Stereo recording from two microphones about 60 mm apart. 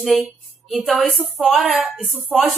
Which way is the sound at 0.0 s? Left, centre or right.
Centre.